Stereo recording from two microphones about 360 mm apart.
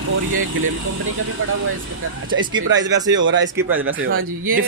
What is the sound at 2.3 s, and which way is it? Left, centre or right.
A man's voice, right.